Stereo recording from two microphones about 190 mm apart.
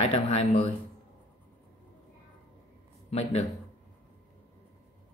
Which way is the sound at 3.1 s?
35° left (ahead or behind).